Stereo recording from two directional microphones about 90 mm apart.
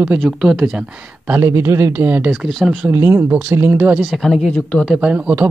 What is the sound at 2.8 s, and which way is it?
Speech, 25° right (ahead or behind).